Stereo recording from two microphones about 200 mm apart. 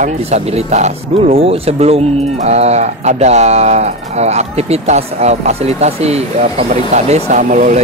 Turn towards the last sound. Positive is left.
turn(degrees=-40)  # may be behind; listen again after turning